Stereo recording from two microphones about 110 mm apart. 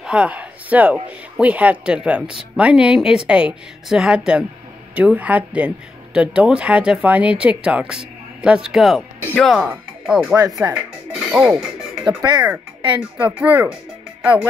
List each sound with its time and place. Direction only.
0.0 s speech: 10° right (ahead or behind); by 9.6 s 5° left (ahead or behind)
9.6 s speech: 5° right (ahead or behind)
10.6 s music: 5° right (ahead or behind)
13.4 s speech: 15° right (ahead or behind)